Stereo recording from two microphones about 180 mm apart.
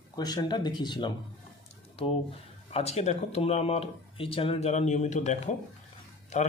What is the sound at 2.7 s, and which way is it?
Speech, 35° left (ahead or behind).